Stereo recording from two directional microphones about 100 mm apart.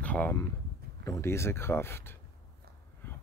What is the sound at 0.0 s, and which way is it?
Speech, 15° left (ahead or behind).